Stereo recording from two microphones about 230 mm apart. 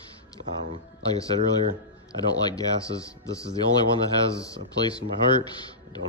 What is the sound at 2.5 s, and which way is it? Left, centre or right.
A man's voice, centre.